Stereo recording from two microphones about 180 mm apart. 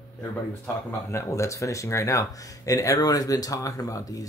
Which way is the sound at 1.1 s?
15° left (ahead or behind).